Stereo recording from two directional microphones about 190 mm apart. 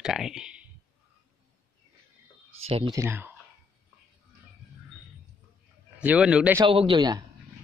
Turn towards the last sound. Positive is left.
turn(degrees=-25)  # may be behind; listen again after turning